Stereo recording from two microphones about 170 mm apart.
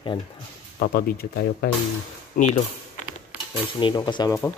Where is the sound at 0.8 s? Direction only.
65° left (ahead or behind).